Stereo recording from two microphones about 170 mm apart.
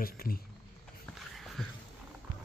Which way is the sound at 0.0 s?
60° left (ahead or behind).